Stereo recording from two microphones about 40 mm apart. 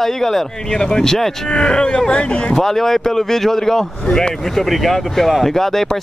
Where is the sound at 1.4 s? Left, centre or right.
Left.